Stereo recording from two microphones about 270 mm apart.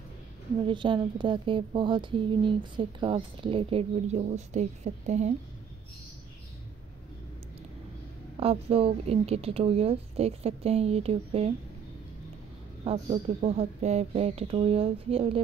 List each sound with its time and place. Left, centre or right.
0.7 s speech: centre
8.4 s speech: right
12.8 s speech: right